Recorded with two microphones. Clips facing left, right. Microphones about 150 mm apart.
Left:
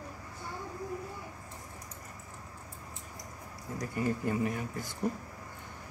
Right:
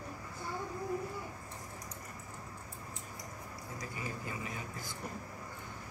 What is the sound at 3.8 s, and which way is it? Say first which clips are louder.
Speech: left 11 dB; 55° left (ahead or behind).